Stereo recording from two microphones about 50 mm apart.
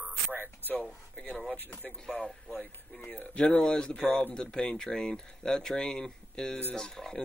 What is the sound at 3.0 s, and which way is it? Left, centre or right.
Speech, left.